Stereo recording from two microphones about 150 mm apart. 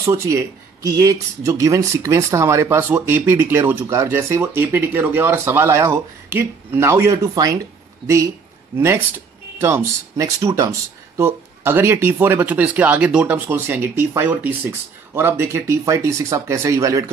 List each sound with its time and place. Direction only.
0.0 s speech: 20° right (ahead or behind)
8.7 s speech: 15° right (ahead or behind)